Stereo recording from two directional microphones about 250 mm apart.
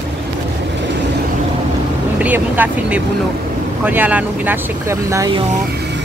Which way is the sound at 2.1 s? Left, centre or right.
Centre.